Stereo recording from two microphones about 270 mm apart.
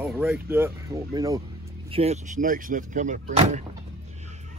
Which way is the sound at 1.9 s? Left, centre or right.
Right.